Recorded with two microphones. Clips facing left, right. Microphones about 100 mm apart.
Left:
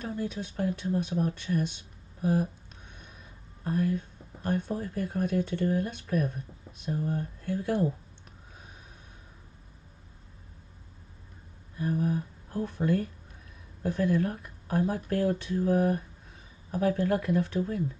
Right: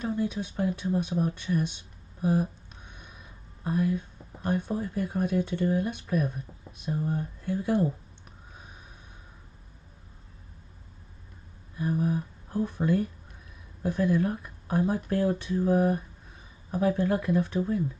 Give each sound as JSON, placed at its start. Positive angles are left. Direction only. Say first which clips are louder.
{"t": 0.0, "sound": "speech", "louder": "right 4 dB", "side_deg": -20}
{"t": 2.2, "sound": "a sound", "louder": "right 1 dB", "side_deg": -15}
{"t": 3.6, "sound": "speech", "louder": "right 1 dB", "side_deg": -15}
{"t": 11.8, "sound": "speech", "louder": "right 1 dB", "side_deg": -20}